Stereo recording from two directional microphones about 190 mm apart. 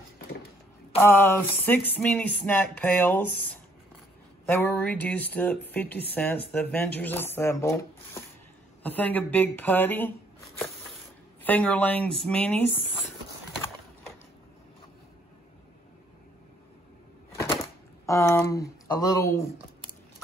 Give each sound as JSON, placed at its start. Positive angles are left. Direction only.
{"t": 0.9, "sound": "speech", "side_deg": 10}
{"t": 11.4, "sound": "speech", "side_deg": 10}
{"t": 18.0, "sound": "speech", "side_deg": 15}